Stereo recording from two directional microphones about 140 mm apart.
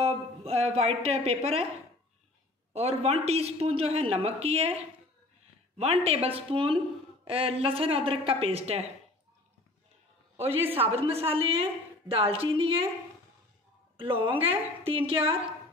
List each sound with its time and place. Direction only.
0.0 s a woman's voice: 45° right (ahead or behind)
2.7 s a woman's voice: 50° right (ahead or behind)
10.3 s a man's voice: 45° right (ahead or behind)
10.6 s a woman's voice: 15° right (ahead or behind)
11.0 s a woman's voice: 45° right (ahead or behind)
13.9 s a woman's voice: 40° right (ahead or behind)